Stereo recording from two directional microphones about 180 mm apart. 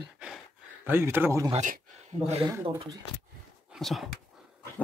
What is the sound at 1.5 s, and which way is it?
Speech, 45° right (ahead or behind).